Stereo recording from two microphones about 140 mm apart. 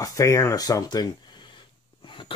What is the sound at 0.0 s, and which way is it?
Speech, 20° left (ahead or behind).